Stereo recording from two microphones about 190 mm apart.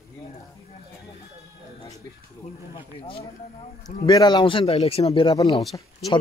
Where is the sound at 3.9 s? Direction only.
20° left (ahead or behind).